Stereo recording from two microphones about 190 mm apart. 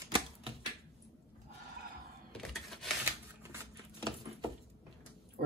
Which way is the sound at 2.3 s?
Centre (ahead or behind).